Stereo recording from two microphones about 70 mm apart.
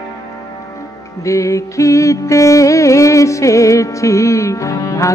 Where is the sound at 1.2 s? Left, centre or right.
Left.